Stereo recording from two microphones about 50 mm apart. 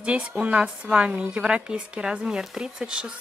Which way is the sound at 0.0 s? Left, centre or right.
Right.